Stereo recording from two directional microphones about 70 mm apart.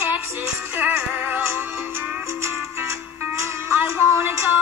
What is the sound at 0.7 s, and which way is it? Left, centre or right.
Music, right.